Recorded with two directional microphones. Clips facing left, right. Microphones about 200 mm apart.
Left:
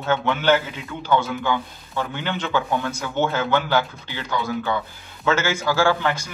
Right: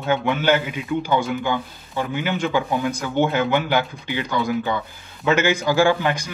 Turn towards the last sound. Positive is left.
turn(degrees=-15)  # may be behind; listen again after turning